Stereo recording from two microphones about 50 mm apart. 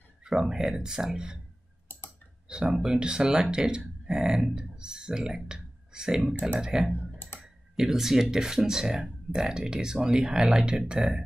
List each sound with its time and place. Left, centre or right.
0.2 s speech: centre
2.4 s speech: centre
6.9 s computer keyboard: left
7.7 s speech: centre